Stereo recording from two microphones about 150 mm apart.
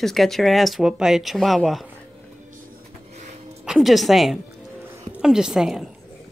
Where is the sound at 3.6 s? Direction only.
Centre (ahead or behind).